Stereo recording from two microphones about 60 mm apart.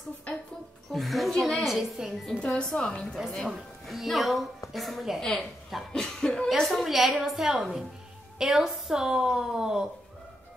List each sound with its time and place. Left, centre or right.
0.9 s a woman's voice: centre
2.4 s a woman's voice: centre
3.8 s a woman's voice: centre
5.9 s a woman's voice: centre